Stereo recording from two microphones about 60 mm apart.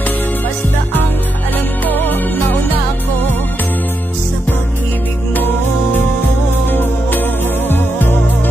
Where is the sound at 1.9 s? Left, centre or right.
Left.